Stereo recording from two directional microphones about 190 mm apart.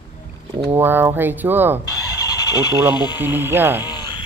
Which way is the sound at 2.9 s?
20° left (ahead or behind).